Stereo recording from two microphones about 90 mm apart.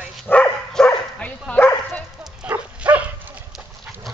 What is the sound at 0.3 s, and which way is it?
Dog, 15° left (ahead or behind).